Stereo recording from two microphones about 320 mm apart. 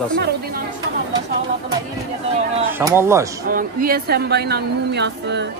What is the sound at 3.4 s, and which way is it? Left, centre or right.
A man's voice, right.